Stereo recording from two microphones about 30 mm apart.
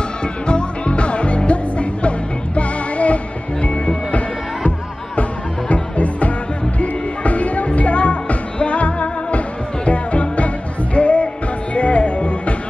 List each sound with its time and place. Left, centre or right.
0.2 s music: left
3.6 s music: left
5.7 s music: left